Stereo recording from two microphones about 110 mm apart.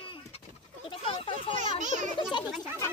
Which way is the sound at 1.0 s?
50° left (ahead or behind).